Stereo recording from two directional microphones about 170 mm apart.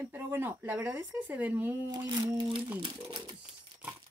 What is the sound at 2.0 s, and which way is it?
Speech, 25° right (ahead or behind).